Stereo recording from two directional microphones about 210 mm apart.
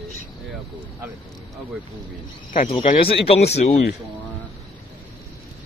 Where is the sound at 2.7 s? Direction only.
25° left (ahead or behind).